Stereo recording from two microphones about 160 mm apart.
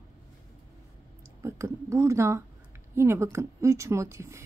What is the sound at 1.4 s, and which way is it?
Speech, 20° right (ahead or behind).